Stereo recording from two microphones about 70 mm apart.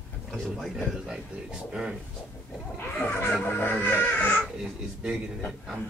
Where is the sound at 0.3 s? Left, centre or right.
Centre.